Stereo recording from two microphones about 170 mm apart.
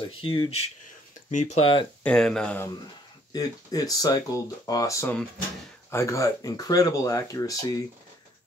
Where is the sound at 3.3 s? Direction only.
20° left (ahead or behind).